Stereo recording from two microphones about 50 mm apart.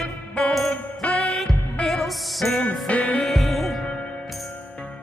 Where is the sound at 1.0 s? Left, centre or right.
Left.